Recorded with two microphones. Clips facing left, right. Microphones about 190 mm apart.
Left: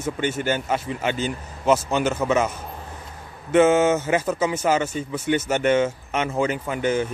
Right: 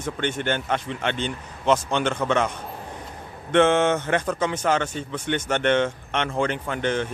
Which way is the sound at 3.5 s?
5° left (ahead or behind).